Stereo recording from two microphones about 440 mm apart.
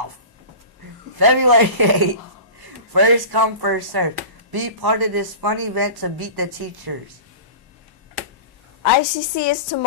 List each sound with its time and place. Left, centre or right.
1.1 s speech: right
8.8 s a woman's voice: left